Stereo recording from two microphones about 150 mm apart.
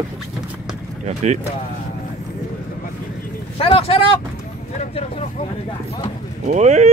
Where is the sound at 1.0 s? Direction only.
50° right (ahead or behind).